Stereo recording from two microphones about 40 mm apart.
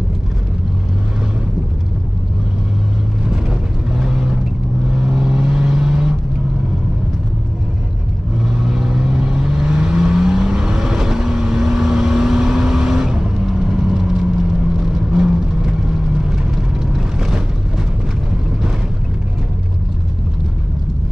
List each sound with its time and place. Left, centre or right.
3.9 s vehicle: centre
8.5 s vehicle: centre